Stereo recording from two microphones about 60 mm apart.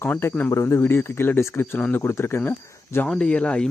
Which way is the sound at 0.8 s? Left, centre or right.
Left.